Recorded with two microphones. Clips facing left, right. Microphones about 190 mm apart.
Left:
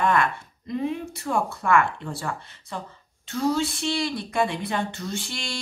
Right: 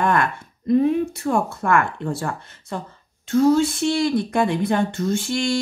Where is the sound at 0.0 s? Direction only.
45° right (ahead or behind).